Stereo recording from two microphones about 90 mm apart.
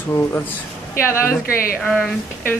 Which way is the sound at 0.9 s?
30° left (ahead or behind).